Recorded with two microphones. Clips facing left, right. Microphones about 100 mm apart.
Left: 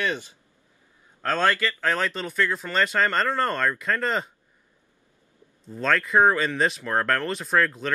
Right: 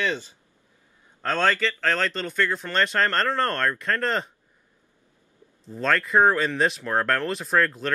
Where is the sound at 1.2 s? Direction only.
5° left (ahead or behind).